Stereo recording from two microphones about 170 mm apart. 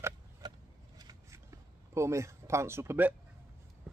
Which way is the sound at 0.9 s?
20° right (ahead or behind).